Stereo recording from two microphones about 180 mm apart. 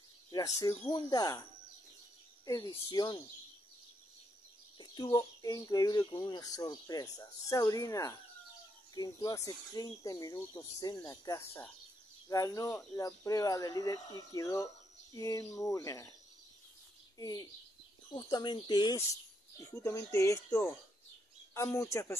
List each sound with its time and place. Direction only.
0.3 s speech: 20° left (ahead or behind)
2.4 s speech: 20° left (ahead or behind)
4.7 s speech: 25° left (ahead or behind)
17.2 s speech: 20° left (ahead or behind)